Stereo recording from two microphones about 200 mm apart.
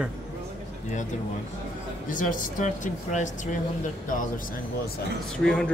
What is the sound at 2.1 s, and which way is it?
Speech, 40° left (ahead or behind).